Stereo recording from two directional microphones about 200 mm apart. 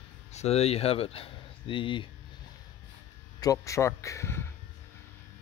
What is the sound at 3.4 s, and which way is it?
Speech, 15° left (ahead or behind).